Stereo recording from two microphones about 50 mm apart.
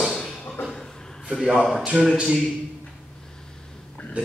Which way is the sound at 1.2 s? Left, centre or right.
Centre.